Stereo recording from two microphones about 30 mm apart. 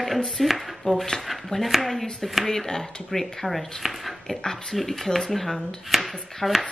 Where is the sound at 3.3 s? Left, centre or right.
Centre.